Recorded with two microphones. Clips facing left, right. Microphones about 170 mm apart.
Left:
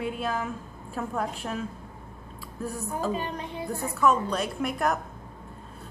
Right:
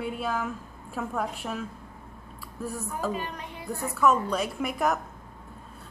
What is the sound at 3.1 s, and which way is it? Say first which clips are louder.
Speech: left 3 dB; 30° left (ahead or behind).